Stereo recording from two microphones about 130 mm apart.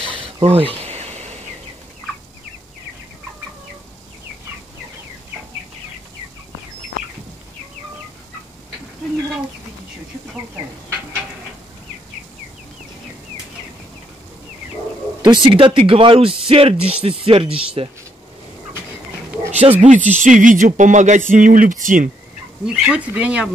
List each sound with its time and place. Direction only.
0.1 s a sound: 45° right (ahead or behind)
15.2 s speech: 40° right (ahead or behind)
19.8 s speech: 70° right (ahead or behind)
21.3 s speech: 90° right
22.7 s speech: 10° right (ahead or behind)